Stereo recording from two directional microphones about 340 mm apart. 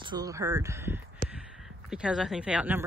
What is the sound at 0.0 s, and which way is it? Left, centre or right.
A woman's voice, centre.